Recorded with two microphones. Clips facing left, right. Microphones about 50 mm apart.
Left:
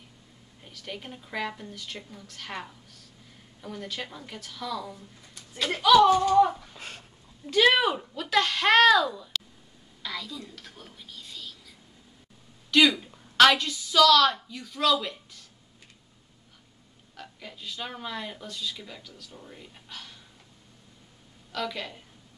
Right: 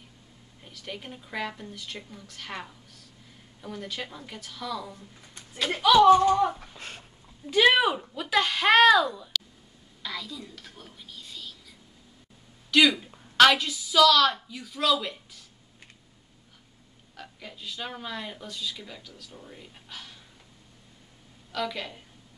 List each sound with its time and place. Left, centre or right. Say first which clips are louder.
0.7 s speech: even; centre
5.9 s speech: right 1 dB; right
6.7 s speech: even; centre
10.0 s whispering: even; centre
12.9 s a woman's voice: even; centre
17.1 s speech: even; centre
21.5 s speech: right 1 dB; centre